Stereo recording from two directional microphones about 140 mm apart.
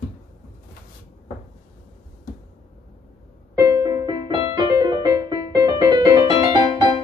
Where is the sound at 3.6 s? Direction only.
30° right (ahead or behind).